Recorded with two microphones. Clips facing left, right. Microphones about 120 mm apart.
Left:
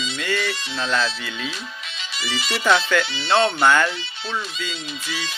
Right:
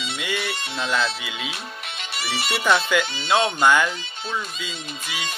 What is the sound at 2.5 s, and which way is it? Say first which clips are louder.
Speech: left 1 dB; 10° right (ahead or behind).